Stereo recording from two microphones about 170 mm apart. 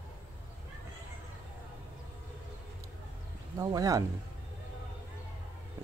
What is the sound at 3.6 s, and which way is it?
Speech, 20° right (ahead or behind).